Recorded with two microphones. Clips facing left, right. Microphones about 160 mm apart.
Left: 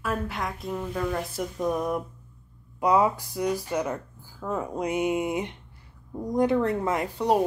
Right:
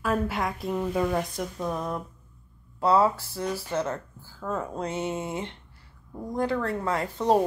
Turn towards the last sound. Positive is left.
turn(degrees=10)  # may be behind; listen again after turning